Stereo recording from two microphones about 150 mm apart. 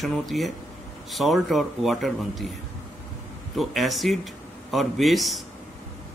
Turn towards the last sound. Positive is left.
turn(degrees=0)  # may be behind; listen again after turning